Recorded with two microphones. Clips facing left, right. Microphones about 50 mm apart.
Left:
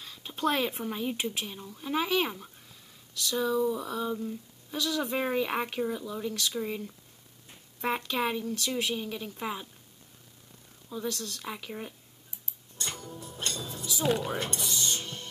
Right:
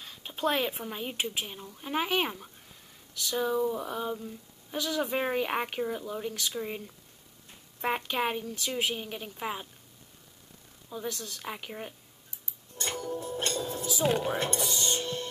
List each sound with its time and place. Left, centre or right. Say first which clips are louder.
0.0 s a sound: even; right
0.4 s speech: even; right
8.0 s speech: even; right
10.9 s speech: left 2 dB; right
12.7 s music: right 5 dB; right
13.2 s speech: right 1 dB; right